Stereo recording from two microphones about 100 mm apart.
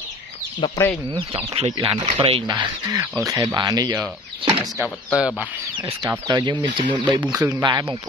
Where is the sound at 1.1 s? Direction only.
70° right (ahead or behind).